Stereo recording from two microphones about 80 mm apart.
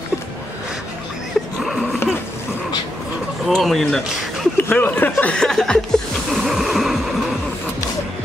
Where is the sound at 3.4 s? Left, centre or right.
Centre.